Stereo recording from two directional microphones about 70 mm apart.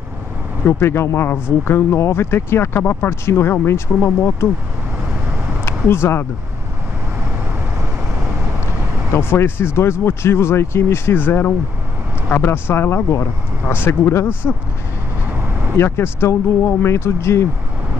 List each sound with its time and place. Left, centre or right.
0.7 s speech: left
5.7 s speech: left
9.1 s speech: left
15.3 s vehicle: right
15.7 s speech: left